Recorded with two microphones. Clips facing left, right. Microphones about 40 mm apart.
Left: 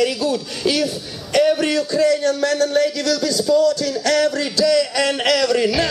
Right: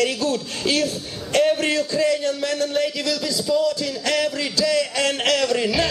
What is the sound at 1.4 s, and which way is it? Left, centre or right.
Speech, centre.